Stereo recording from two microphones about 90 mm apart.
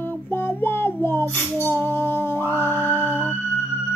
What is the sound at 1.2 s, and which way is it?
Music, 35° right (ahead or behind).